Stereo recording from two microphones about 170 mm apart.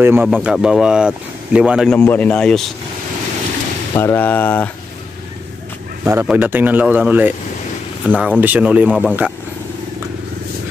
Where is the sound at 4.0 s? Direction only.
10° left (ahead or behind).